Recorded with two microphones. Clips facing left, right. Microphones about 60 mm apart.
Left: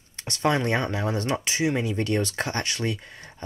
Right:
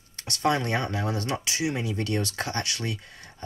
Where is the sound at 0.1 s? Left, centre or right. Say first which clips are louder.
Left 1 dB; left.